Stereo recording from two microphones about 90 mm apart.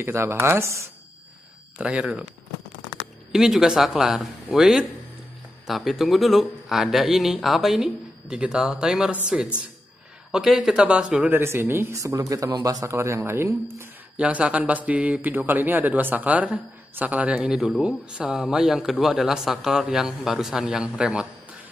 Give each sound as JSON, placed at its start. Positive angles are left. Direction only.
{"t": 0.0, "sound": "speech", "side_deg": -25}
{"t": 1.8, "sound": "speech", "side_deg": -10}
{"t": 3.3, "sound": "speech", "side_deg": -5}
{"t": 11.3, "sound": "speech", "side_deg": -25}
{"t": 14.1, "sound": "speech", "side_deg": -15}